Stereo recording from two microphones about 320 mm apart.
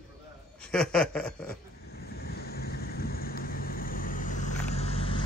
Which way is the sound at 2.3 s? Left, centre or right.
Left.